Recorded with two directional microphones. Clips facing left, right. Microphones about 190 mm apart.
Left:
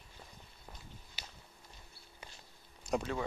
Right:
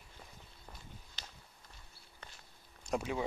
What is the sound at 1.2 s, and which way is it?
Walk, 5° left (ahead or behind).